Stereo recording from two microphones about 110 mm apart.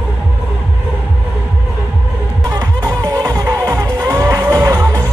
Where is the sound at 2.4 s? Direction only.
35° right (ahead or behind).